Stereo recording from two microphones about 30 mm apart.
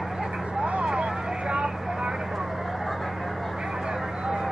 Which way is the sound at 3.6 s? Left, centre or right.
Right.